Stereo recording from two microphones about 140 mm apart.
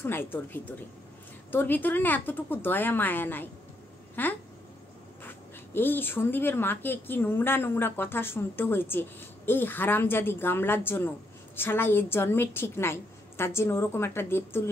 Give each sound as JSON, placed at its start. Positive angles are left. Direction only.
{"t": 0.0, "sound": "speech", "side_deg": 15}